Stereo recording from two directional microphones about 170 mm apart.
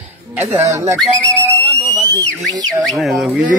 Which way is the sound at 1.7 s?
20° right (ahead or behind).